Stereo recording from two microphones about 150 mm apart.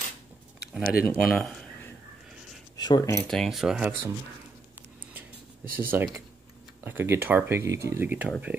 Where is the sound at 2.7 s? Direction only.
25° left (ahead or behind).